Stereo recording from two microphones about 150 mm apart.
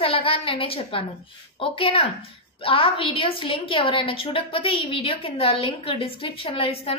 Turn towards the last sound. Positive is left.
turn(degrees=40)  # may be behind; listen again after turning